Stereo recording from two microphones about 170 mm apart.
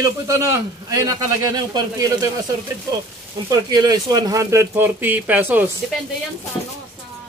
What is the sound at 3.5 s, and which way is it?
Speech, 25° right (ahead or behind).